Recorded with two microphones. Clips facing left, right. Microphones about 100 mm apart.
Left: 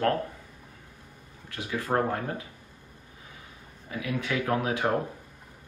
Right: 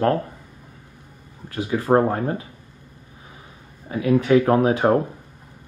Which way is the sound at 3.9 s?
35° right (ahead or behind).